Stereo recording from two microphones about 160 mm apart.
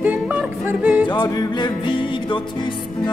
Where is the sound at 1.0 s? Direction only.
25° left (ahead or behind).